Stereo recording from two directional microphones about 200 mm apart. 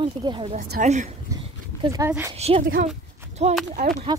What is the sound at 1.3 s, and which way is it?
Dog, 20° right (ahead or behind).